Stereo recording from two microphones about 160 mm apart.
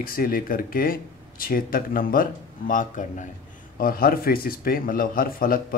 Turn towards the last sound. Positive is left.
turn(degrees=60)  # may be behind; listen again after turning